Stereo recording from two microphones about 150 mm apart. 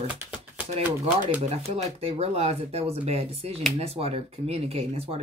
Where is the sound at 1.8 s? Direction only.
45° right (ahead or behind).